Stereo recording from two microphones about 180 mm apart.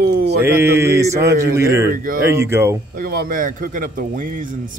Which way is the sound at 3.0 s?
55° right (ahead or behind).